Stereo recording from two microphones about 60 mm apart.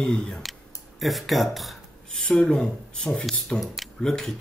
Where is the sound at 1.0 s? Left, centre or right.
Centre.